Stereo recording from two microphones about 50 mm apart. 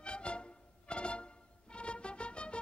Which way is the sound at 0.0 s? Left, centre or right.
Left.